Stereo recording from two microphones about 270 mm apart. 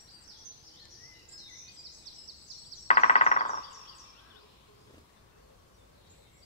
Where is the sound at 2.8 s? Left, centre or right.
Left.